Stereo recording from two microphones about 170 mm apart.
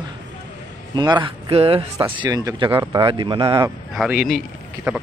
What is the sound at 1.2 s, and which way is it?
Speech, 35° right (ahead or behind).